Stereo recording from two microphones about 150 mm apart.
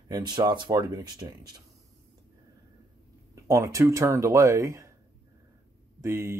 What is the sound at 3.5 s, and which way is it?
Speech, 20° right (ahead or behind).